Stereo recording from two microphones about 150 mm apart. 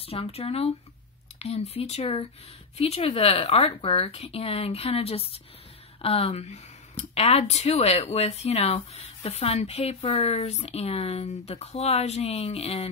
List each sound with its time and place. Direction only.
0.0 s speech: 40° left (ahead or behind)